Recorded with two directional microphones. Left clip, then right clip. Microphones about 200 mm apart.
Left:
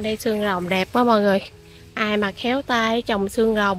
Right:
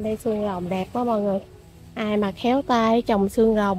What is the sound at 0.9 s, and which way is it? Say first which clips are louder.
Speech: left 6 dB; 35° left (ahead or behind).